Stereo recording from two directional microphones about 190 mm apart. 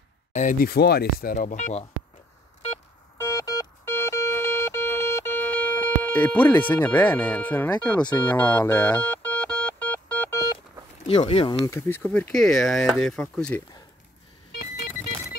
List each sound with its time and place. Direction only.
0.3 s speech: 40° left (ahead or behind)
1.3 s speech: 40° left (ahead or behind)
3.2 s music: 15° left (ahead or behind)
11.1 s speech: 30° left (ahead or behind)
11.6 s speech: 10° left (ahead or behind)